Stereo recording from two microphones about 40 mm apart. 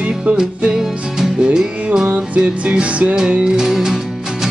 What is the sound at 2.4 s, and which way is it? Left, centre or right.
Music, right.